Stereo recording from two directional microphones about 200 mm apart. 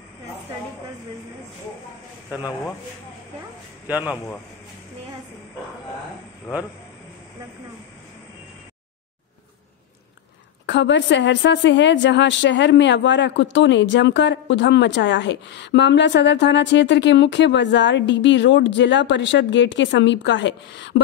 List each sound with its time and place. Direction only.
3.8 s a man's voice: 5° right (ahead or behind)
10.7 s a woman's voice: 60° left (ahead or behind)